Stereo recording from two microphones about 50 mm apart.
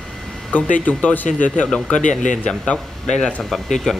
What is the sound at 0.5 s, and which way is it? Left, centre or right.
Speech, left.